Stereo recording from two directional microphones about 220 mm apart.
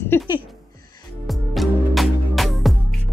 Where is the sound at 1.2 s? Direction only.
Centre (ahead or behind).